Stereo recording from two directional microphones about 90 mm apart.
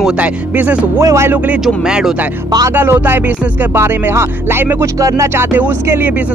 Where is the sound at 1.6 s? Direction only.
5° right (ahead or behind).